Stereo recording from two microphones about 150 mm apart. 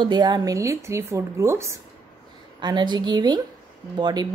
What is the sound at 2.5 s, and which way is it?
A woman's voice, 30° right (ahead or behind).